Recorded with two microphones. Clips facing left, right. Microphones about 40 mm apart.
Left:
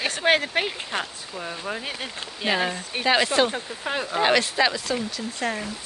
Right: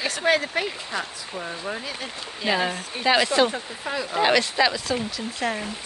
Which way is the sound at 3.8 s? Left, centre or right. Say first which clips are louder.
Left 1 dB; left.